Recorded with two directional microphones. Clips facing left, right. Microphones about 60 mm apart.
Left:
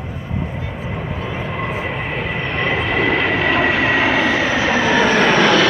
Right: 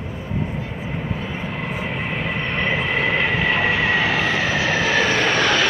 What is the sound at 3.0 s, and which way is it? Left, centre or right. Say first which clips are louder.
Train: left 3 dB; left.